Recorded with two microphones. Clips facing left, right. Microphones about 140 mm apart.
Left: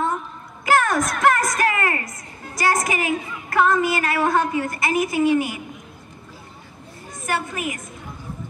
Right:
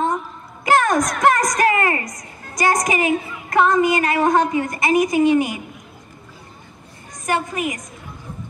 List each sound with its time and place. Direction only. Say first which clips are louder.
0.7 s a sound: right 2 dB; 20° right (ahead or behind)
1.2 s a woman's voice: right 2 dB; 20° right (ahead or behind)
7.2 s a woman's voice: right 4 dB; 20° right (ahead or behind)